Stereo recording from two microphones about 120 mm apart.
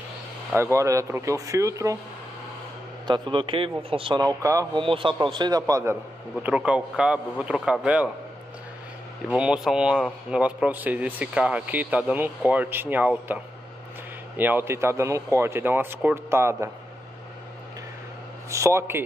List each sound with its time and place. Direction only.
0.5 s speech: 20° right (ahead or behind)
3.1 s speech: 45° right (ahead or behind)
4.2 s speech: 30° right (ahead or behind)
4.7 s a man's voice: 45° right (ahead or behind); by 5.9 s 25° right (ahead or behind)
6.4 s speech: 10° right (ahead or behind)
9.3 s speech: 5° right (ahead or behind); by 16.7 s 25° right (ahead or behind)
18.5 s speech: 25° right (ahead or behind)